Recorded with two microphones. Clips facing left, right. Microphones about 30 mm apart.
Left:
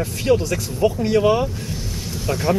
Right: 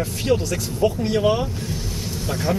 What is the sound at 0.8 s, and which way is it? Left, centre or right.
Speech, centre.